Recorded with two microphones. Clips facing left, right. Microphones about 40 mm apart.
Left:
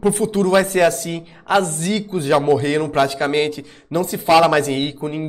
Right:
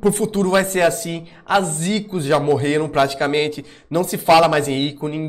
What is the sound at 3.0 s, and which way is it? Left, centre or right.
Speech, right.